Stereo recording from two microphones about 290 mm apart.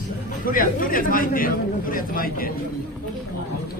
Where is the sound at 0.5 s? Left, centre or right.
Left.